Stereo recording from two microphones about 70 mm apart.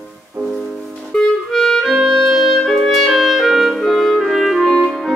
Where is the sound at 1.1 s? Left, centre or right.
Centre.